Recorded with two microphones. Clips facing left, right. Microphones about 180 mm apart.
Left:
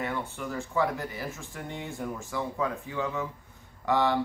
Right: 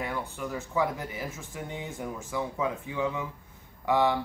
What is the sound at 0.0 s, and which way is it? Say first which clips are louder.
Speech: left 1 dB; 15° right (ahead or behind).